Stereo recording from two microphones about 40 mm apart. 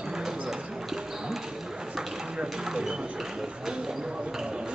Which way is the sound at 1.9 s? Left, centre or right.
Centre.